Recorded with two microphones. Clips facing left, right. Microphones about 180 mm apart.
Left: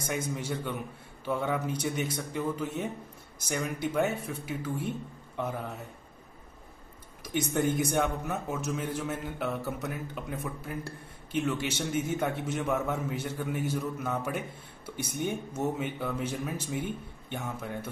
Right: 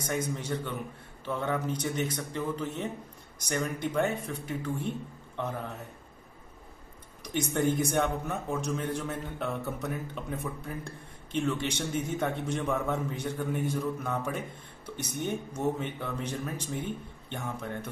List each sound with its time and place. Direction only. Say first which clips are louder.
0.0 s a man's voice: right 1 dB; 10° left (ahead or behind)
7.3 s a man's voice: even; centre (ahead or behind)